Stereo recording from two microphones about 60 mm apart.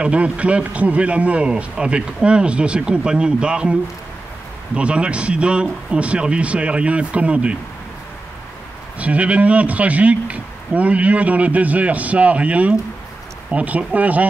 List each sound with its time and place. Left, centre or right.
0.0 s speech: right
4.7 s speech: centre
8.9 s speech: right